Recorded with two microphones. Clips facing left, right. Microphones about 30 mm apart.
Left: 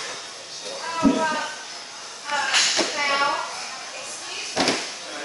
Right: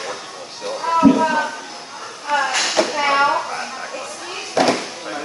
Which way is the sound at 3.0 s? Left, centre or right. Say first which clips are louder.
Right 6 dB; right.